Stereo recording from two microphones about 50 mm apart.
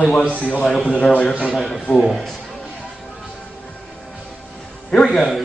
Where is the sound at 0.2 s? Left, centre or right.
Right.